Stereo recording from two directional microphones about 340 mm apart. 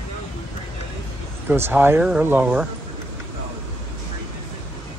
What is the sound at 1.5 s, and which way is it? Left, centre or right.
Speech, centre.